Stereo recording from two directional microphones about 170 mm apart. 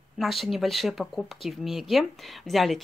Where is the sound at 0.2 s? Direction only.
Centre (ahead or behind).